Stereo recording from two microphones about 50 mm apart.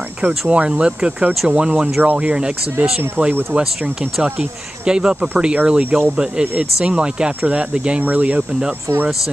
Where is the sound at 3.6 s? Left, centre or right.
Centre.